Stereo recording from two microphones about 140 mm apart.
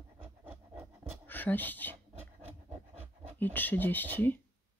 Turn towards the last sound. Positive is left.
turn(degrees=10)  # may be behind; listen again after turning